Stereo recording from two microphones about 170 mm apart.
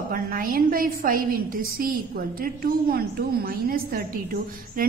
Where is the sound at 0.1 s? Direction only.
55° right (ahead or behind).